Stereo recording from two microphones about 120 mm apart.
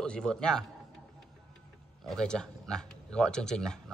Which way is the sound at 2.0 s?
5° left (ahead or behind).